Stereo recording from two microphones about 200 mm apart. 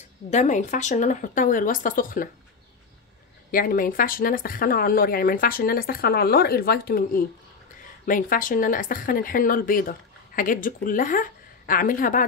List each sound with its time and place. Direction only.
0.3 s speech: 35° left (ahead or behind)
3.5 s speech: 45° left (ahead or behind)